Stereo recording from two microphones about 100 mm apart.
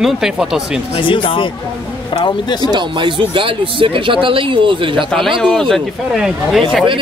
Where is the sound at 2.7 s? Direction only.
55° right (ahead or behind).